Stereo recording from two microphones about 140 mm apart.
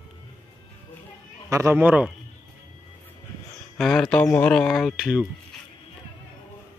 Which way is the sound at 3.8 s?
5° left (ahead or behind).